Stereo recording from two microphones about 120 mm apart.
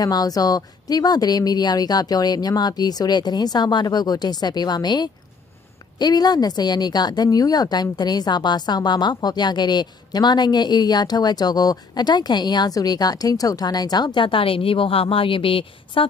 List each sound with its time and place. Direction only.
0.0 s a woman's voice: 30° left (ahead or behind); by 16.1 s 50° left (ahead or behind)